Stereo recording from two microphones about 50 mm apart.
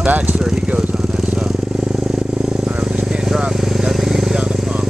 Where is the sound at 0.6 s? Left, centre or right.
Right.